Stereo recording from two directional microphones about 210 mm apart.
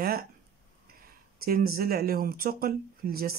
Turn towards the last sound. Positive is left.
turn(degrees=-45)  # may be behind; listen again after turning